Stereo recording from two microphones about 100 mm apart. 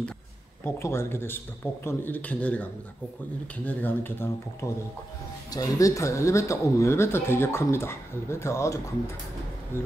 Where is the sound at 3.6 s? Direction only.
20° left (ahead or behind).